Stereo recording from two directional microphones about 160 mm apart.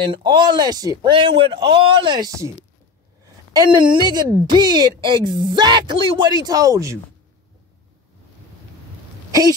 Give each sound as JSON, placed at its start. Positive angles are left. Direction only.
{"t": 0.0, "sound": "speech", "side_deg": -30}
{"t": 3.5, "sound": "speech", "side_deg": -30}
{"t": 9.3, "sound": "speech", "side_deg": -25}